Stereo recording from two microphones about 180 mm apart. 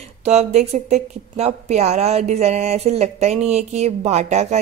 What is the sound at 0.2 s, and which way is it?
Speech, 35° right (ahead or behind).